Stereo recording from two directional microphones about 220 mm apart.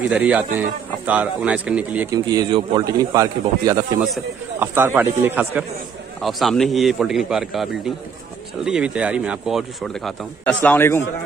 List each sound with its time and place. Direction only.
0.1 s speech: 5° right (ahead or behind)
2.1 s speech: 20° right (ahead or behind)
4.0 s a man's voice: 5° right (ahead or behind)